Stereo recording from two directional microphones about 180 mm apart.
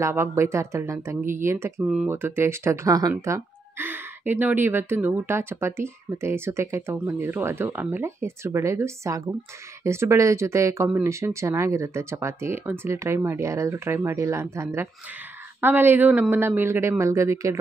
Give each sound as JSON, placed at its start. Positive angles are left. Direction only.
{"t": 0.0, "sound": "speech", "side_deg": -15}